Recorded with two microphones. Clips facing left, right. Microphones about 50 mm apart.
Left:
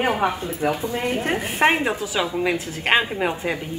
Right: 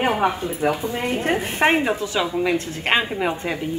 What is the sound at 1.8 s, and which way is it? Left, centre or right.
A woman's voice, centre.